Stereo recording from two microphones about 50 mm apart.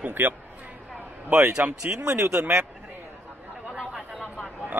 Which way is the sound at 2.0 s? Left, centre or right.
Right.